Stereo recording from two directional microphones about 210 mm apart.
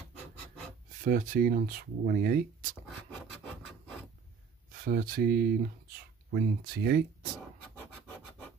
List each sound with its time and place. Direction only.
1.0 s speech: 40° right (ahead or behind)
3.0 s wood: 5° left (ahead or behind)
4.7 s speech: 45° right (ahead or behind)